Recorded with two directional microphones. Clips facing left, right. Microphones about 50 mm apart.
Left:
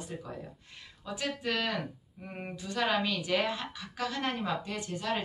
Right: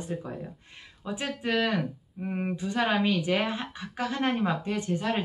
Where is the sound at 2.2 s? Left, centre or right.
Centre.